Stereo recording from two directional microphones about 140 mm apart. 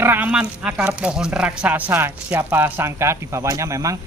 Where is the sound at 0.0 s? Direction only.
15° right (ahead or behind).